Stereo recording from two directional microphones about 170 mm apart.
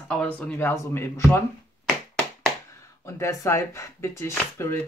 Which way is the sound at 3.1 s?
15° left (ahead or behind).